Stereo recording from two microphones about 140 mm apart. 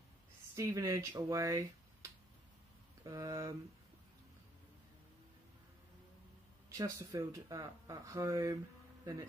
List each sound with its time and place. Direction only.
0.6 s speech: 20° right (ahead or behind)
6.8 s speech: 25° right (ahead or behind)